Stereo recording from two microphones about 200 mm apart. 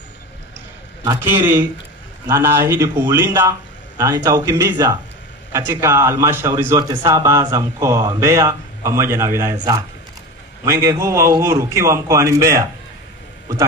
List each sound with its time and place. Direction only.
1.0 s speech: 10° right (ahead or behind)